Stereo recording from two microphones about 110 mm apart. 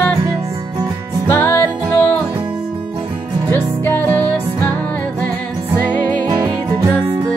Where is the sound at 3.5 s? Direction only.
15° left (ahead or behind).